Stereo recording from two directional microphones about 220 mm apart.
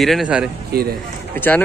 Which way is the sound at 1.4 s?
10° left (ahead or behind).